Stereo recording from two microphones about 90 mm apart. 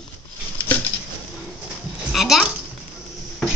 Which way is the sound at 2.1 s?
Centre (ahead or behind).